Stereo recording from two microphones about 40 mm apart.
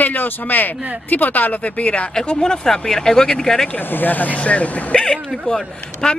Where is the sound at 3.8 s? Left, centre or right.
Left.